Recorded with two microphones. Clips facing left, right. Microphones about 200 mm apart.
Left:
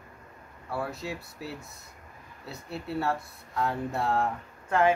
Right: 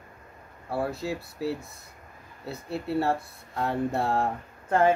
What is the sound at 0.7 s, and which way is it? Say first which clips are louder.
Speech: right 4 dB; 35° right (ahead or behind).